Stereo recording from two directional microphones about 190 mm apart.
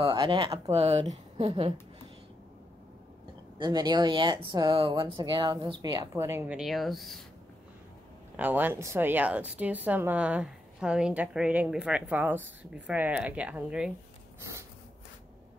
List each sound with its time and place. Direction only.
0.0 s speech: 25° right (ahead or behind)
3.5 s speech: 20° right (ahead or behind)
6.1 s speech: 15° right (ahead or behind)
8.4 s speech: 10° right (ahead or behind)